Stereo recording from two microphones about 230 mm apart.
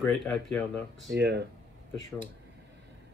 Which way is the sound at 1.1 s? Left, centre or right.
Right.